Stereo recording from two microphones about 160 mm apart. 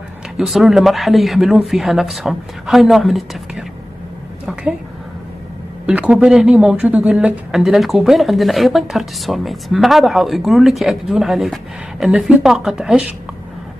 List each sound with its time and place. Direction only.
0.4 s speech: centre (ahead or behind)
5.9 s speech: 5° right (ahead or behind)